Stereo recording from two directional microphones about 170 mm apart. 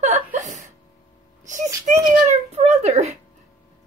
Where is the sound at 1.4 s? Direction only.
45° right (ahead or behind).